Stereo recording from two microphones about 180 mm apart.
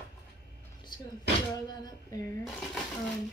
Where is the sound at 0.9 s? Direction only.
25° left (ahead or behind).